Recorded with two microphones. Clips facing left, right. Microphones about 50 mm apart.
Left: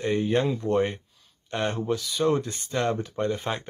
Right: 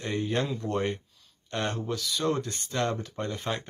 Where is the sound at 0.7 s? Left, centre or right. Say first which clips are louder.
Left 5 dB; centre.